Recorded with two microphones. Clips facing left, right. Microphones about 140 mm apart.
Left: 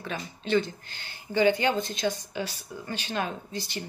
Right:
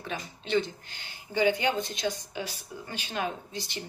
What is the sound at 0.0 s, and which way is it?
Speech, 15° right (ahead or behind).